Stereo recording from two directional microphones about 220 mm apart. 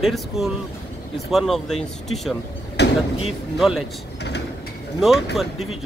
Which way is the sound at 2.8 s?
50° left (ahead or behind).